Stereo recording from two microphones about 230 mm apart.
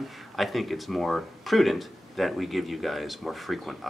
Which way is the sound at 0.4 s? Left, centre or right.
Centre.